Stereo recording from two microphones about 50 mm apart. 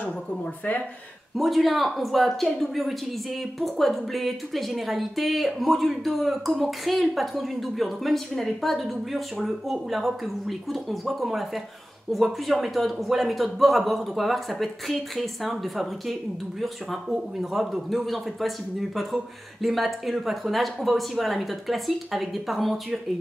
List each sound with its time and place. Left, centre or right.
0.0 s speech: left
1.3 s a man's voice: centre